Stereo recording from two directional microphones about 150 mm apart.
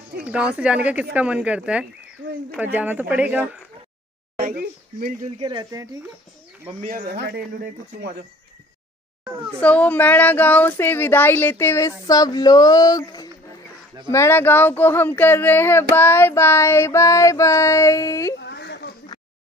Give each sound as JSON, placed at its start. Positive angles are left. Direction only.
{"t": 0.2, "sound": "speech", "side_deg": -5}
{"t": 4.4, "sound": "speech", "side_deg": -75}
{"t": 5.2, "sound": "speech", "side_deg": -35}
{"t": 6.9, "sound": "speech", "side_deg": -80}
{"t": 9.6, "sound": "speech", "side_deg": 10}